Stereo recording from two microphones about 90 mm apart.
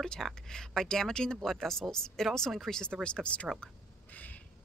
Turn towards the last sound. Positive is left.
turn(degrees=20)  # may be behind; listen again after turning